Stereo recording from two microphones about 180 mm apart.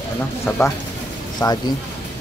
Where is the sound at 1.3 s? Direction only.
20° left (ahead or behind).